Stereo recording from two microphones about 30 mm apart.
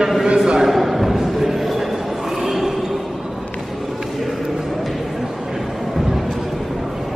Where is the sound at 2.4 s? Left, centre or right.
Centre.